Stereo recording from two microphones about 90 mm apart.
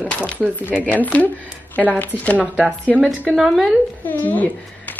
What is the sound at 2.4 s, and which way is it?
Speech, 5° right (ahead or behind).